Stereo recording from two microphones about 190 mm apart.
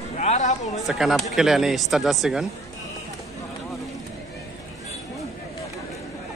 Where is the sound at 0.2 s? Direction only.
35° left (ahead or behind).